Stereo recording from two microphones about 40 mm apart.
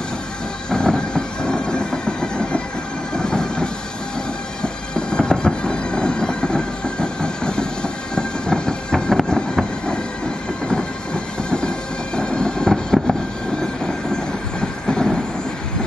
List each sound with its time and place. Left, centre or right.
0.7 s train: centre
12.2 s train: left
12.9 s vehicle: centre